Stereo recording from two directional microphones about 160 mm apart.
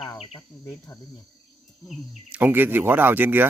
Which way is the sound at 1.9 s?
5° right (ahead or behind).